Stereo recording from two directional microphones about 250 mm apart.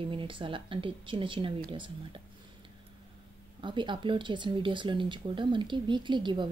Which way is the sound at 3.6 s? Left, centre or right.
Centre.